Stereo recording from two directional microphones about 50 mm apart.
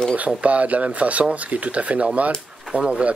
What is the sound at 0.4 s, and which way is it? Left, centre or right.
Speech, right.